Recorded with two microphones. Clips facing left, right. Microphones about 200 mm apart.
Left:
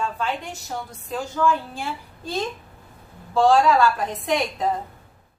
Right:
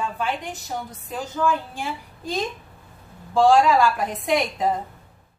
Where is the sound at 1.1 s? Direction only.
15° right (ahead or behind).